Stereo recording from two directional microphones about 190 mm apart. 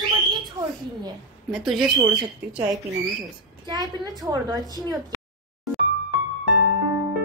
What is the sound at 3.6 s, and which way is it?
A woman's voice, 20° right (ahead or behind).